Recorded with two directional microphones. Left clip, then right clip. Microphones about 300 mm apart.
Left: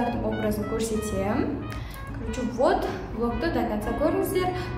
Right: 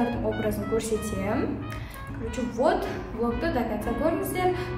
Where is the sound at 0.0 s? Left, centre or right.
Centre.